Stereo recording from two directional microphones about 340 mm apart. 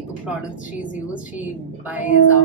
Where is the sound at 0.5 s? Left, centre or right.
Left.